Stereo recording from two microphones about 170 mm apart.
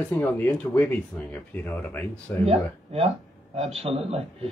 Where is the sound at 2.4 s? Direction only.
35° right (ahead or behind).